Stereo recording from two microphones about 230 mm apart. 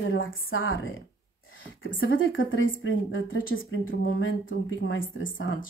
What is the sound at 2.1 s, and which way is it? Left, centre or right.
Speech, left.